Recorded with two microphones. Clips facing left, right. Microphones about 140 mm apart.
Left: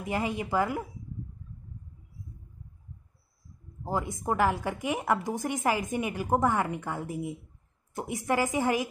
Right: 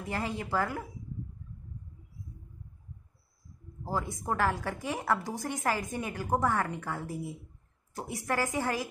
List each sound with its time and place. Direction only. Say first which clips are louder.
0.0 s a woman's voice: left 4 dB; 15° left (ahead or behind)
3.8 s a woman's voice: left 3 dB; 20° left (ahead or behind)